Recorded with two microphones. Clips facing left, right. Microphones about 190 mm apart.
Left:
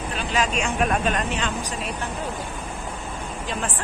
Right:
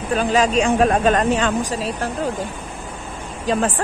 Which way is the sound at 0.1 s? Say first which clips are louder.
Right 9 dB; 40° right (ahead or behind).